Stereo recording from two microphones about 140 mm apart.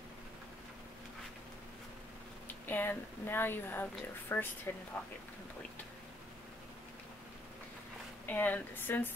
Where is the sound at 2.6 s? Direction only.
15° left (ahead or behind).